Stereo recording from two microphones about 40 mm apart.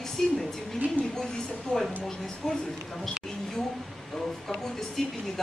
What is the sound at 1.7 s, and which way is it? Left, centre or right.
Speech, centre.